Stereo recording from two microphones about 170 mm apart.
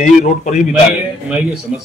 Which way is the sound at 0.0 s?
45° left (ahead or behind).